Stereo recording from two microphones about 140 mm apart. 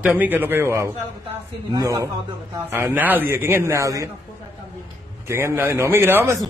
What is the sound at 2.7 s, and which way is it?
A man's voice, 15° right (ahead or behind).